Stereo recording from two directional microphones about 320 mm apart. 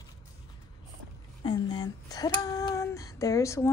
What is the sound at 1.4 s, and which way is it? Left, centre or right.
Speech, centre.